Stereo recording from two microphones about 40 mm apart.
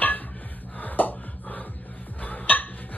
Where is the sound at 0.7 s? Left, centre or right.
Left.